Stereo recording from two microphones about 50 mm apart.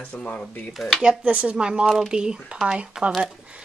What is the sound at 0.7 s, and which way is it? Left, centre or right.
Speech, centre.